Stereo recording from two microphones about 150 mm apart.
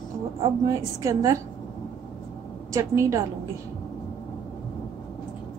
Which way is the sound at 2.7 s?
20° right (ahead or behind).